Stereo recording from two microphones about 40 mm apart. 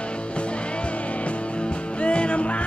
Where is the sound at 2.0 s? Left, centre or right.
Left.